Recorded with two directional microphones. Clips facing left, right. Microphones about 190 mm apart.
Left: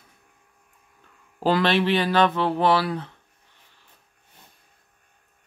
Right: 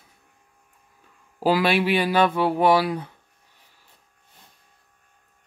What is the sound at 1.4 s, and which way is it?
Speech, 10° right (ahead or behind).